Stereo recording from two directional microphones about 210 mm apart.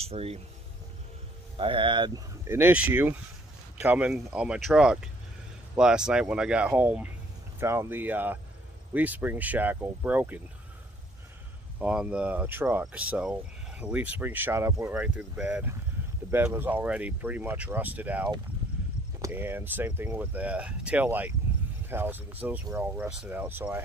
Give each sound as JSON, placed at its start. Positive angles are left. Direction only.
{"t": 0.0, "sound": "speech", "side_deg": -30}
{"t": 1.6, "sound": "speech", "side_deg": -25}
{"t": 11.8, "sound": "speech", "side_deg": -5}